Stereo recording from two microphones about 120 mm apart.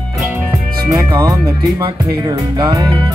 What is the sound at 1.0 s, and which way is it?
Music, 30° right (ahead or behind).